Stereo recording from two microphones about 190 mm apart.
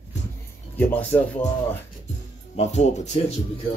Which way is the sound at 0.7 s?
10° left (ahead or behind).